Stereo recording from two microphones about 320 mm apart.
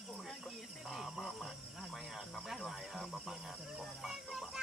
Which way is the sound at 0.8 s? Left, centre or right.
Centre.